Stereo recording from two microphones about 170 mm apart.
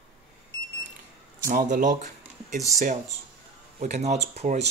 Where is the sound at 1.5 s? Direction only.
50° right (ahead or behind).